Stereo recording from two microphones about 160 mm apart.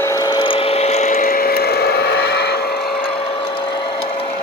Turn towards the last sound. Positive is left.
turn(degrees=80)